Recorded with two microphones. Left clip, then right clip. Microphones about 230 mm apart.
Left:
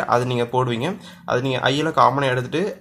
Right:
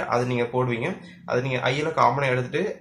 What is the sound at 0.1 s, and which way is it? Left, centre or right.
Speech, left.